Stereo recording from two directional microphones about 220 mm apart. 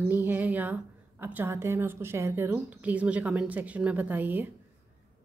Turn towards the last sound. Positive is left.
turn(degrees=-10)  # may be behind; listen again after turning